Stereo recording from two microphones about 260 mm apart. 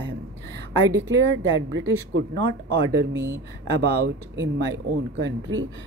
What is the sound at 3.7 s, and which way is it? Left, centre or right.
Speech, right.